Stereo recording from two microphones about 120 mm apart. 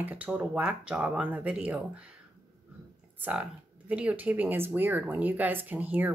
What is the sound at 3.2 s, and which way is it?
A woman's voice, 10° right (ahead or behind).